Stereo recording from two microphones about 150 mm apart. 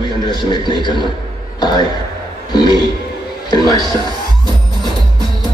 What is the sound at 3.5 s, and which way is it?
Music, 25° left (ahead or behind).